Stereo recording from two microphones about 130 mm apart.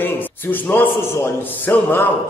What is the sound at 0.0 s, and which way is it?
A man's voice, 15° left (ahead or behind).